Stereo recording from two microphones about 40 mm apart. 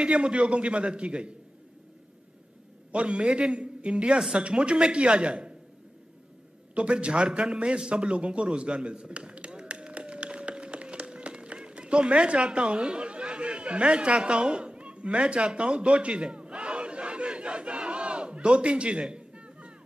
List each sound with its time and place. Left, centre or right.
0.0 s a man's voice: right
2.9 s a man's voice: right
6.7 s a man's voice: right
8.5 s a sound: right